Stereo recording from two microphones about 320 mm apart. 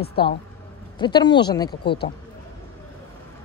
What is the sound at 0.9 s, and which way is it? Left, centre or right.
Speech, centre.